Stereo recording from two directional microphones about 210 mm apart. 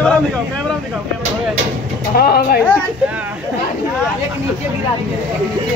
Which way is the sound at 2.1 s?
45° left (ahead or behind).